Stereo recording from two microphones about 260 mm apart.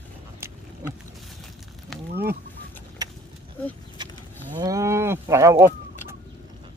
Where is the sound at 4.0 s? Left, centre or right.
Centre.